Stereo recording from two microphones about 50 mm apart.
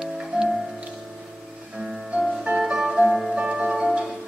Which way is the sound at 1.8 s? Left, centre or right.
Centre.